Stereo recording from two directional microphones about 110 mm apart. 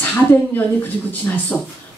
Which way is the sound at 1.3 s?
20° left (ahead or behind).